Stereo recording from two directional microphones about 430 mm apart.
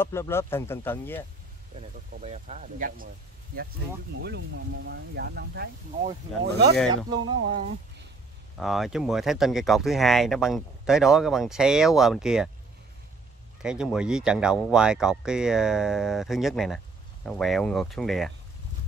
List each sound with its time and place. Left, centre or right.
0.0 s speech: centre
1.8 s speech: centre
4.2 s speech: right
6.9 s speech: centre
8.5 s speech: centre
13.6 s speech: centre